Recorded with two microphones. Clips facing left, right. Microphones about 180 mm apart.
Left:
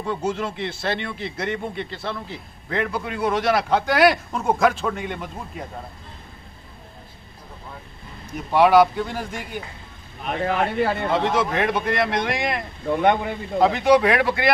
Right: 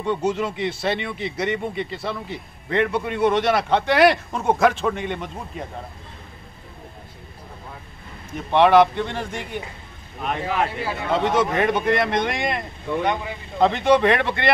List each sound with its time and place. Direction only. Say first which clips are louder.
0.0 s a man's voice: right 3 dB; 5° left (ahead or behind)
8.5 s a man's voice: even; 5° left (ahead or behind)
10.4 s speech: left 5 dB; 60° left (ahead or behind)
11.1 s a man's voice: right 4 dB; centre (ahead or behind)
13.0 s speech: left 7 dB; 55° left (ahead or behind)
13.6 s a man's voice: even; 5° left (ahead or behind)